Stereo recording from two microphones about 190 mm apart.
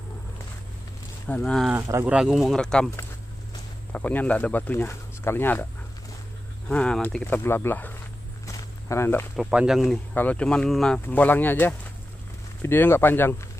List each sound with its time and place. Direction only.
1.2 s speech: 5° left (ahead or behind)
1.8 s speech: 15° right (ahead or behind); by 2.9 s 5° left (ahead or behind)
3.9 s speech: 10° left (ahead or behind)
6.7 s speech: 5° left (ahead or behind)
8.5 s walk: 15° left (ahead or behind)
9.4 s speech: 5° right (ahead or behind); by 13.5 s 10° left (ahead or behind)